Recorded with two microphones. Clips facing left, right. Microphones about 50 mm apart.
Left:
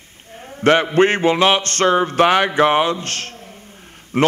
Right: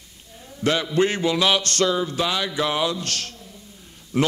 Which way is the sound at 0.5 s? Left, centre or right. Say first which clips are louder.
Left 8 dB; left.